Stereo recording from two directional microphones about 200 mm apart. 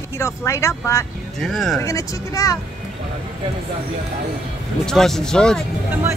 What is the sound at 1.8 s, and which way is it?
Speech, 15° left (ahead or behind).